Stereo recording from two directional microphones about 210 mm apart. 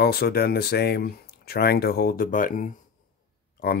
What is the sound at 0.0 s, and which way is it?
Speech, 50° left (ahead or behind).